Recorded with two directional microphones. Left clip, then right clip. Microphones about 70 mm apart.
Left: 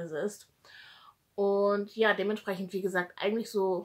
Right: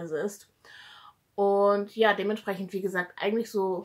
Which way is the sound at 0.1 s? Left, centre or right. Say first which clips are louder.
Right 3 dB; left.